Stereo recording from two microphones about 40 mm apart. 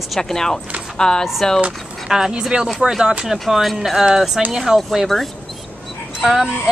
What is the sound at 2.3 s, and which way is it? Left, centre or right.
Speech, right.